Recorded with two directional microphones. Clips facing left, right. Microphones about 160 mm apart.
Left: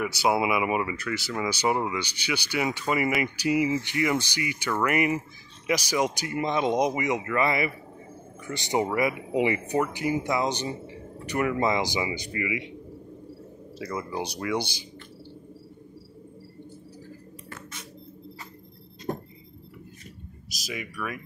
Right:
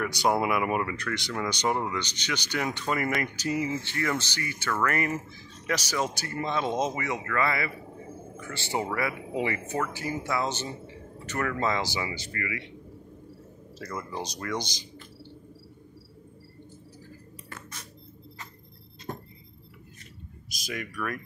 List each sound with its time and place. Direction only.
0.0 s speech: 5° left (ahead or behind)
13.7 s speech: 10° left (ahead or behind)
20.4 s speech: centre (ahead or behind)